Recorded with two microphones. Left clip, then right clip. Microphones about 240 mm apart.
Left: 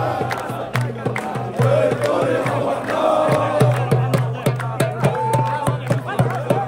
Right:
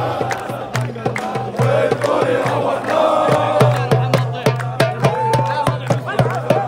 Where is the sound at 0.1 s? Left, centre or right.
Centre.